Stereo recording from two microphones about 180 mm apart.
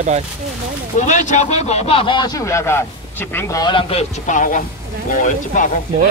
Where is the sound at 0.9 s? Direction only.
45° left (ahead or behind); by 4.0 s 25° left (ahead or behind).